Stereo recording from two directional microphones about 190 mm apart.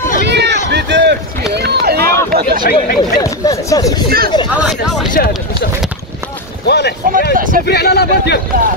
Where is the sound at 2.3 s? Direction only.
50° right (ahead or behind).